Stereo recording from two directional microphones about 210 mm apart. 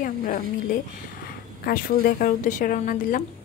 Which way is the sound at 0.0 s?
40° left (ahead or behind).